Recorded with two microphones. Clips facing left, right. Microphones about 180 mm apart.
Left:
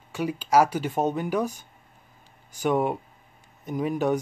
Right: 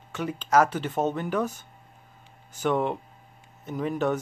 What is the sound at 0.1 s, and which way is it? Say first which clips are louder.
Speech: left 1 dB; 10° left (ahead or behind).